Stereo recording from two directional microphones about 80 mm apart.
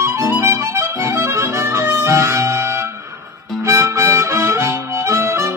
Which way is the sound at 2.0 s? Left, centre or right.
Right.